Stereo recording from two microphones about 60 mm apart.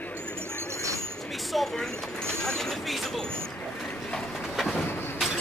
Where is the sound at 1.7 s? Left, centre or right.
Centre.